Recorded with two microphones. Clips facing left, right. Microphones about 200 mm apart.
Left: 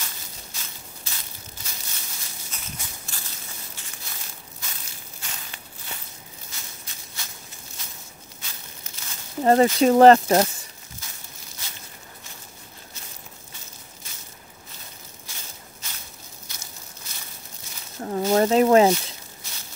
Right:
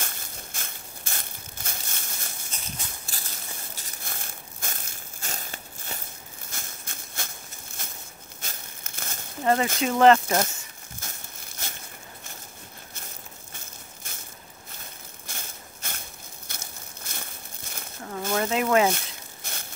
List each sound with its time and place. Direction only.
0.0 s crushing: 55° right (ahead or behind)
3.1 s biting: 35° right (ahead or behind)
3.7 s a sound: 45° right (ahead or behind)
7.8 s walk: 50° right (ahead or behind)
8.4 s crumpling: 50° right (ahead or behind)
9.4 s speech: 35° left (ahead or behind)
11.0 s crumpling: 50° right (ahead or behind)
13.5 s a sound: 55° right (ahead or behind)
15.2 s a sound: 55° right (ahead or behind)
16.4 s crumpling: 55° right (ahead or behind)
18.0 s a sound: 35° left (ahead or behind)
18.9 s zipper: 55° right (ahead or behind)